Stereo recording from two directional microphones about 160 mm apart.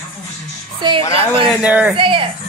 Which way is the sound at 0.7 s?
30° right (ahead or behind).